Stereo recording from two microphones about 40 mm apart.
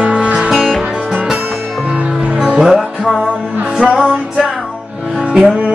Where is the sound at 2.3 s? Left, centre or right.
Right.